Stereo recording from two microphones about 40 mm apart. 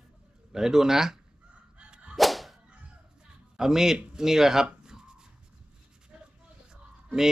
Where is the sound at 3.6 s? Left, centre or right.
Centre.